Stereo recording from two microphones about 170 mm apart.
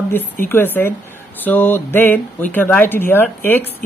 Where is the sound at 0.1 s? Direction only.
10° left (ahead or behind).